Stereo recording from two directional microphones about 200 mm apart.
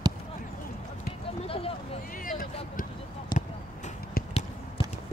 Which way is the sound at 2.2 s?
45° left (ahead or behind).